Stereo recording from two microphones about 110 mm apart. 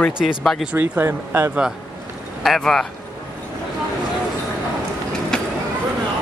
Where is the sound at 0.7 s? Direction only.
15° right (ahead or behind).